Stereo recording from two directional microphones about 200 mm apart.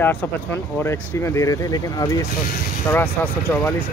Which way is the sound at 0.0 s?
10° left (ahead or behind).